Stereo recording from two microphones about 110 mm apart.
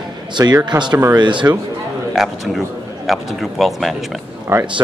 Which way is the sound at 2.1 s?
Centre (ahead or behind).